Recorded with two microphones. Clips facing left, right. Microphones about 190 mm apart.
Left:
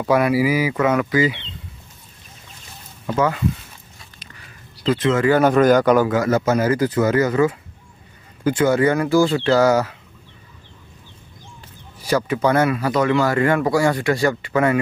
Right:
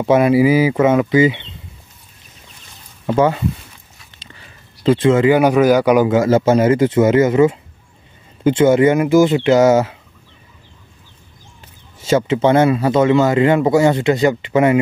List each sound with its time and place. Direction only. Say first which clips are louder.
0.0 s speech: right 5 dB; 25° right (ahead or behind)
3.1 s speech: right 5 dB; 25° right (ahead or behind)
4.8 s speech: right 5 dB; 25° right (ahead or behind); by 6.0 s 10° right (ahead or behind)
6.0 s speech: right 5 dB; 25° right (ahead or behind)
12.0 s speech: right 4 dB; 25° right (ahead or behind)